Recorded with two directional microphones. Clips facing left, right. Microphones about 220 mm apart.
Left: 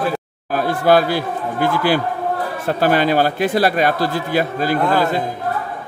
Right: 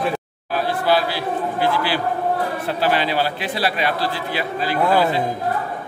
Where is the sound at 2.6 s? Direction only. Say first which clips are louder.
Left 6 dB; 50° left (ahead or behind).